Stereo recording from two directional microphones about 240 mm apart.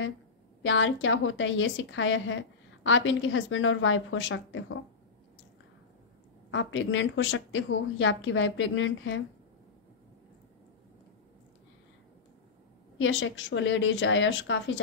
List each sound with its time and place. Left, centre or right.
0.7 s a woman's voice: left
6.5 s a woman's voice: left
13.0 s a woman's voice: left